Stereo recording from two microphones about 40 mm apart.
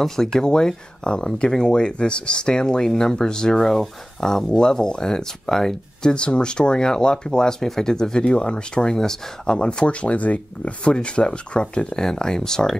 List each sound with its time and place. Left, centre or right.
0.0 s speech: centre
6.1 s speech: left
10.8 s speech: left